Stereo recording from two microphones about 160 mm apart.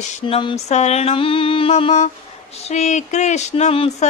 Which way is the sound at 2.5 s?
45° left (ahead or behind).